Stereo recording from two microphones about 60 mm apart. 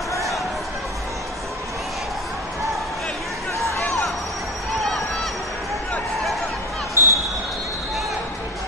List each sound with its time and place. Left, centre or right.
7.0 s basketball bounce: right